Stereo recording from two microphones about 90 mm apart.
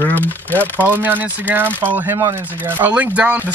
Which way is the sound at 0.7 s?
20° right (ahead or behind).